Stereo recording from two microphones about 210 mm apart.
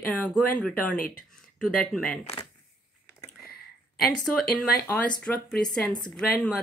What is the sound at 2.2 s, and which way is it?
Speech, 30° left (ahead or behind).